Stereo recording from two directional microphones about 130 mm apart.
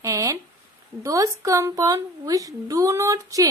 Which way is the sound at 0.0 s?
25° right (ahead or behind).